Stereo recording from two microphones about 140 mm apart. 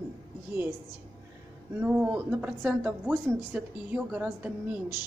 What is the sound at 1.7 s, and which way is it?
Speech, 15° right (ahead or behind).